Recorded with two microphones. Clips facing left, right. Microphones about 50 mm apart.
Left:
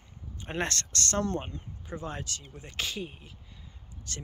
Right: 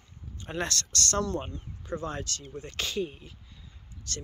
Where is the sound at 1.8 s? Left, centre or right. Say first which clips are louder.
Right 4 dB; centre.